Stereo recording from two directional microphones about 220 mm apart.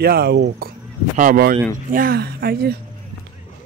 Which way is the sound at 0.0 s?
45° right (ahead or behind).